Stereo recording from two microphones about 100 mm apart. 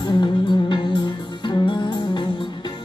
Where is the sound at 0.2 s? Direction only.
50° left (ahead or behind).